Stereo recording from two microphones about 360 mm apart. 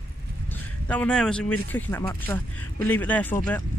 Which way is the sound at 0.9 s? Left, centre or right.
Centre.